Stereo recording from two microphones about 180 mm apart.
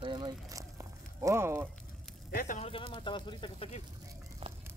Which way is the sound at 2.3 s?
50° left (ahead or behind).